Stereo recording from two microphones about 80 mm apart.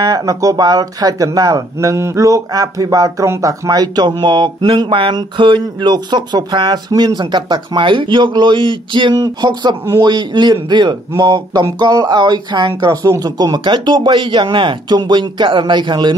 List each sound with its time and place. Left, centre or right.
0.0 s speech: right
6.9 s speech: right
7.2 s a man's voice: right
9.1 s speech: right